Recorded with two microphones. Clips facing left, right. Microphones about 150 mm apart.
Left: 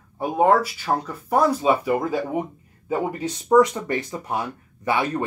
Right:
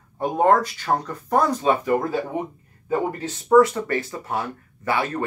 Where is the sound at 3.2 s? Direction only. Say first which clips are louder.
Right 1 dB; 15° left (ahead or behind).